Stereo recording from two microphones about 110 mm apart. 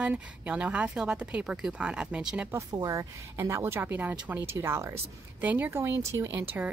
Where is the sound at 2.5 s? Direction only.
35° right (ahead or behind).